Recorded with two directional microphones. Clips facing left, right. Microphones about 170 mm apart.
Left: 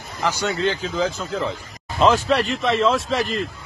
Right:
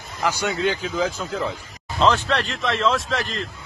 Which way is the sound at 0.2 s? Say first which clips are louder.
Left 1 dB; 15° right (ahead or behind).